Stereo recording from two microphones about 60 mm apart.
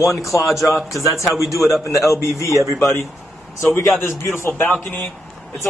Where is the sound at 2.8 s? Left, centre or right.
Left.